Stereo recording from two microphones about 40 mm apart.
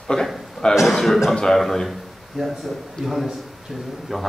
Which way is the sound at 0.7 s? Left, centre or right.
Centre.